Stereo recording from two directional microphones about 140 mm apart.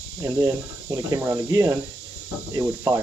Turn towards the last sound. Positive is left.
turn(degrees=-20)  # may be behind; listen again after turning